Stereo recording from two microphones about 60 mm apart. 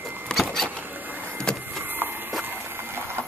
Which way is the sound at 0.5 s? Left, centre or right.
Centre.